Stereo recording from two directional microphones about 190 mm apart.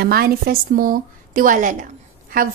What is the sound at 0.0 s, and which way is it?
A woman's voice, 50° right (ahead or behind).